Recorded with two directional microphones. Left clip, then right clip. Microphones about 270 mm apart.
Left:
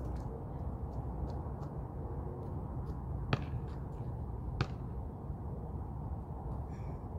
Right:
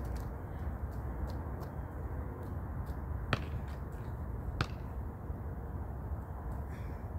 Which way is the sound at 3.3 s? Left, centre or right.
Centre.